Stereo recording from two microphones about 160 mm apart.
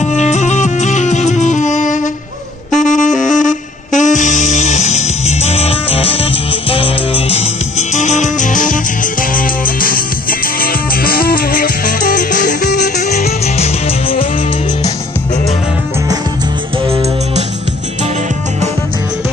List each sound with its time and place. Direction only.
0.0 s music: 45° left (ahead or behind)
2.7 s saxophone: 50° left (ahead or behind)
6.7 s music: 35° left (ahead or behind)